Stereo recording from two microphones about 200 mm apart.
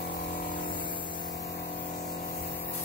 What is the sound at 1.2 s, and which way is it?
Spray, 55° left (ahead or behind).